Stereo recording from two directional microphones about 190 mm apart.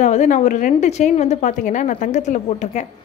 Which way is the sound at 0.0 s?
40° left (ahead or behind).